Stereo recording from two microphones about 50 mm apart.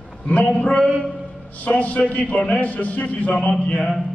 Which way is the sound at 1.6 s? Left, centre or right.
Left.